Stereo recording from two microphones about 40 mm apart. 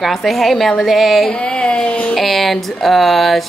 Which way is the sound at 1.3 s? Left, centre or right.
Left.